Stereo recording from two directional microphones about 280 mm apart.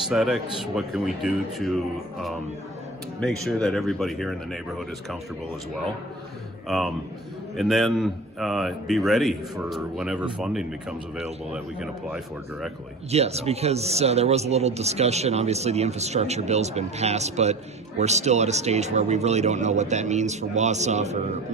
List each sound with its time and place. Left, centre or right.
0.1 s a man's voice: centre
6.7 s a man's voice: centre
13.1 s a man's voice: right